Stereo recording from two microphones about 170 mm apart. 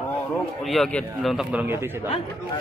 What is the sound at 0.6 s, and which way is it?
Speech, centre (ahead or behind).